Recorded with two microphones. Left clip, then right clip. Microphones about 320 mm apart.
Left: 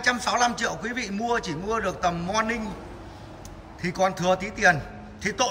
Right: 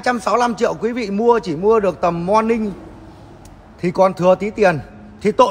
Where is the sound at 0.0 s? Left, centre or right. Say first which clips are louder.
Right 6 dB; centre.